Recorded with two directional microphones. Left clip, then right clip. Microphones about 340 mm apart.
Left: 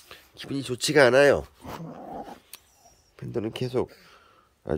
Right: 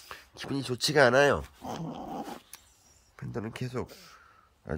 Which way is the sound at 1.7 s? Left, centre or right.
Centre.